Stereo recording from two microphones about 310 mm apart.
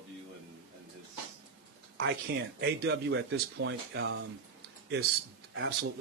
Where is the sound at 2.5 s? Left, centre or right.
Right.